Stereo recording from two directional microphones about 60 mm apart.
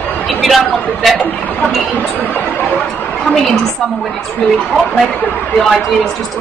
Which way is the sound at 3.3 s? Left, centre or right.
Centre.